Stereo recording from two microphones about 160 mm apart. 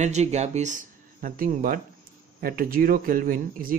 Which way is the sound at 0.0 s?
45° right (ahead or behind).